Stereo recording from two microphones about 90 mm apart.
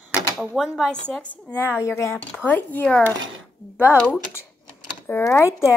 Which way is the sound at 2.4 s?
20° left (ahead or behind).